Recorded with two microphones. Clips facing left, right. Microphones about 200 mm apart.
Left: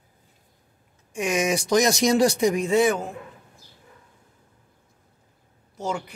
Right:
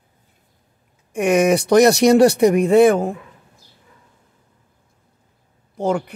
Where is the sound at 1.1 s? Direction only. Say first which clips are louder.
Right 8 dB; 60° right (ahead or behind).